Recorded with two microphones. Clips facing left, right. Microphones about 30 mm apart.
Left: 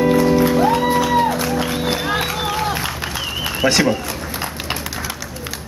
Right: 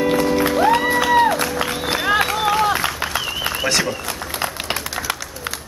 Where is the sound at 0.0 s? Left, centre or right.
Centre.